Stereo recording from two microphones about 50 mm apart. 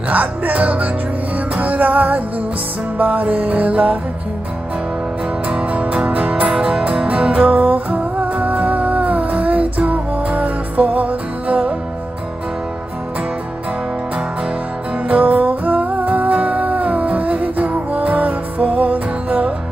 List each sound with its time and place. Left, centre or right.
0.1 s music: right
5.5 s music: right
15.0 s music: right